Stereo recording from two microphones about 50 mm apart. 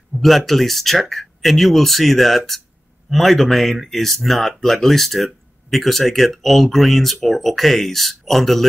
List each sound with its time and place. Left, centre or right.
0.1 s speech: centre